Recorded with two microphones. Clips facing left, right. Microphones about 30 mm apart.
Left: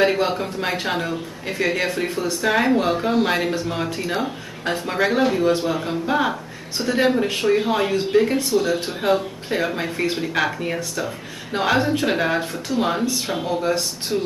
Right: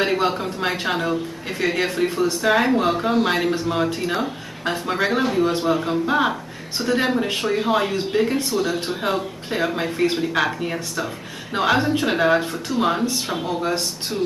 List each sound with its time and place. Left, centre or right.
0.0 s a woman's voice: centre
3.5 s a man's voice: centre
5.5 s a man's voice: centre